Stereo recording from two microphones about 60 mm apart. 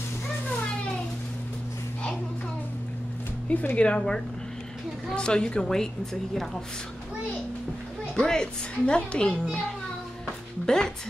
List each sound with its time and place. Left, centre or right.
3.4 s a child's voice: left; by 6.6 s centre
8.2 s a child's voice: centre